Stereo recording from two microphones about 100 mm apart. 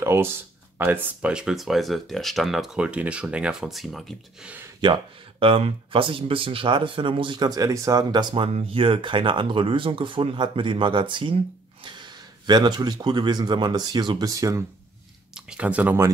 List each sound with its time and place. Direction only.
0.0 s speech: 25° right (ahead or behind)
1.3 s speech: 5° right (ahead or behind)
4.4 s speech: 15° right (ahead or behind)
4.8 s speech: 60° right (ahead or behind)
8.4 s speech: 65° right (ahead or behind); by 14.6 s 35° right (ahead or behind)
15.3 s speech: 10° right (ahead or behind)